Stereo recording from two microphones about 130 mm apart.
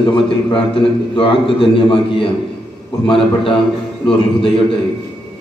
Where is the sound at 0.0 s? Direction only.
40° left (ahead or behind).